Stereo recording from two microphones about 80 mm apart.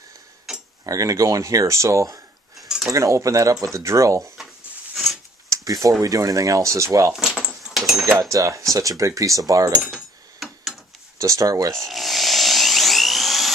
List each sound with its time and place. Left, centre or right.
0.5 s tick-tock: centre
0.8 s speech: right
2.5 s cutlery: centre
2.9 s speech: right
5.5 s a sound: right
5.9 s speech: right
7.1 s keys jangling: centre
8.2 s speech: right
9.8 s a sound: centre
11.1 s speech: right
11.7 s a sound: centre